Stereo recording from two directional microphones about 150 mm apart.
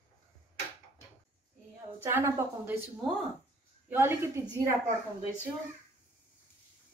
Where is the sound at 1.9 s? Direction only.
15° right (ahead or behind).